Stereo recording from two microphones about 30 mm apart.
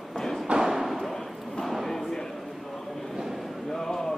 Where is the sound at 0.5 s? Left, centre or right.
Centre.